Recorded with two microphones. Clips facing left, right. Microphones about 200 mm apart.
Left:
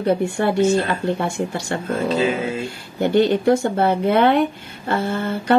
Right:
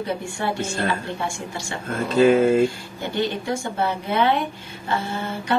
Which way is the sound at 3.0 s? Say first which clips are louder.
Left 9 dB; 60° left (ahead or behind).